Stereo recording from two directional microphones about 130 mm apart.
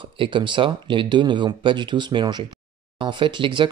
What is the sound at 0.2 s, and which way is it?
Speech, 40° right (ahead or behind).